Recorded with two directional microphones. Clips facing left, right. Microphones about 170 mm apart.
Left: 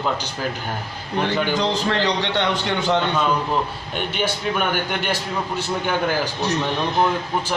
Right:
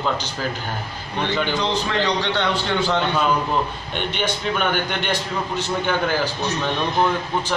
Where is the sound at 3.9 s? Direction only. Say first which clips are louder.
Even; 5° left (ahead or behind).